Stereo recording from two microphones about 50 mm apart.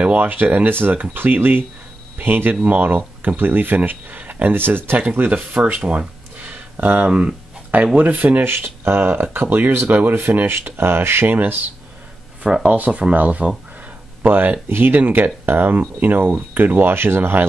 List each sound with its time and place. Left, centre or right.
0.0 s speech: right
0.7 s speech: right
2.5 s speech: right
5.9 s a sound: right
7.1 s speech: right
8.5 s speech: right
11.3 s speech: right
12.7 s speech: right